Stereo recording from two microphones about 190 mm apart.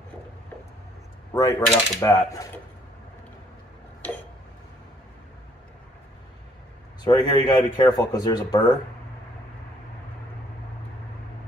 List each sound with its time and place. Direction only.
1.3 s speech: 15° left (ahead or behind)
7.1 s speech: 20° left (ahead or behind)